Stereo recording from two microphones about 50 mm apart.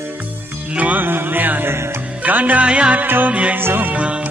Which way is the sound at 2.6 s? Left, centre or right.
Right.